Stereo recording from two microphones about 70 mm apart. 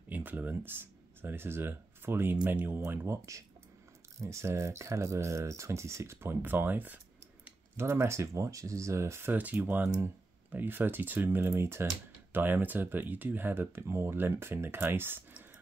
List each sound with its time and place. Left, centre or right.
0.1 s speech: right
3.1 s speech: right
7.7 s speech: right
9.3 s speech: right